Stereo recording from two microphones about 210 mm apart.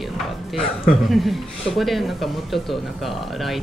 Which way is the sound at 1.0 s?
Centre (ahead or behind).